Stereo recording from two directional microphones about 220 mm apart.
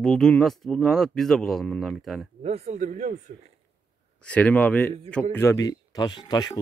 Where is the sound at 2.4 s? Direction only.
30° right (ahead or behind).